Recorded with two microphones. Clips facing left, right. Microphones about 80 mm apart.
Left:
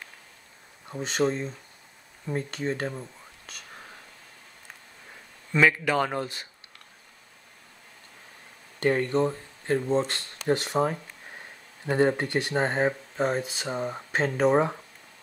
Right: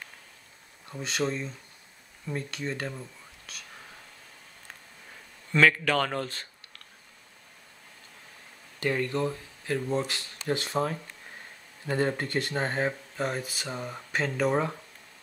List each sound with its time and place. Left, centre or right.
0.9 s speech: left
5.5 s speech: centre
8.8 s speech: left
13.4 s speech: centre
13.7 s speech: left